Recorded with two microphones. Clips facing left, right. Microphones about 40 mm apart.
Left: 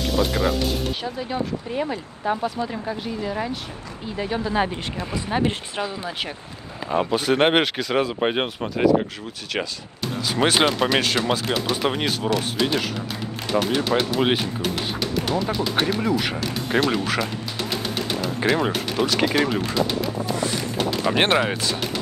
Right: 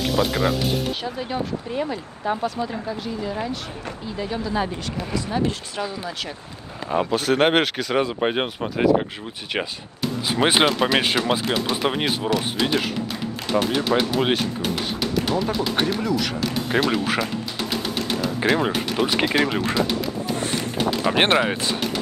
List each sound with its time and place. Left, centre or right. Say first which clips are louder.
0.0 s speech: right 1 dB; centre
4.2 s speech: left 2 dB; left
6.9 s speech: even; centre
10.2 s speech: right 1 dB; centre
10.6 s speech: right 1 dB; centre
16.0 s speech: left 1 dB; centre
16.3 s speech: right 1 dB; centre
20.3 s a sound: even; right
20.9 s a sound: even; centre
21.3 s speech: right 1 dB; centre